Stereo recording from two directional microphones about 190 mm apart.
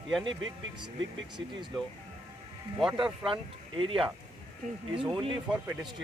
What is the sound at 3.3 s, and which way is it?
Speech, 25° right (ahead or behind).